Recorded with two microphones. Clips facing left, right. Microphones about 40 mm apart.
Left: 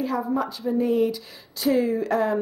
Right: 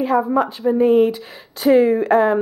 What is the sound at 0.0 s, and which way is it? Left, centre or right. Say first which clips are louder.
A woman's voice: right 8 dB; right.